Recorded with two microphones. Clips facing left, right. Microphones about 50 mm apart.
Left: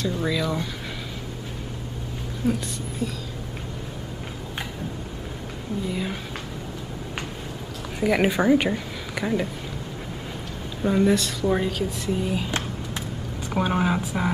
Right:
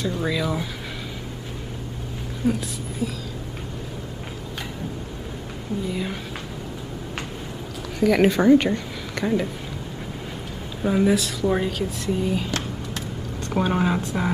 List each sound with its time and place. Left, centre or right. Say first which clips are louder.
0.2 s speech: right 1 dB; centre
2.4 s speech: right 1 dB; centre
5.9 s speech: even; centre
8.0 s a woman's voice: right 3 dB; centre
10.8 s speech: even; centre
12.4 s a sound: even; centre
13.5 s speech: right 1 dB; centre